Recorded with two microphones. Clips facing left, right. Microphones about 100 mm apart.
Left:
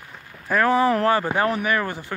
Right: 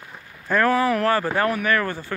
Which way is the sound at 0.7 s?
30° left (ahead or behind).